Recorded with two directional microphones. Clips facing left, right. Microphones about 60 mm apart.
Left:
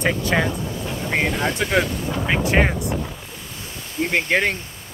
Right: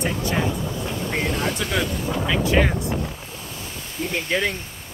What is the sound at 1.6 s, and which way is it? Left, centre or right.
Speech, left.